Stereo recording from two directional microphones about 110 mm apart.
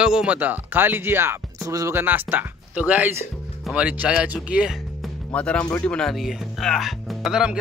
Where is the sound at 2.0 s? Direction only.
15° right (ahead or behind).